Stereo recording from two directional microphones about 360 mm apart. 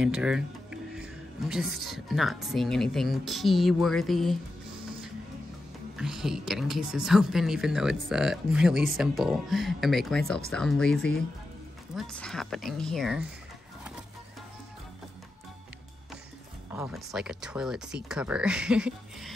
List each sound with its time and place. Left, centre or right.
0.0 s music: centre
1.5 s speech: centre
5.9 s speech: centre
16.7 s speech: centre